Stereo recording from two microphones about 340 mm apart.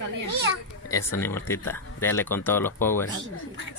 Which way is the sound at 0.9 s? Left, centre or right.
Centre.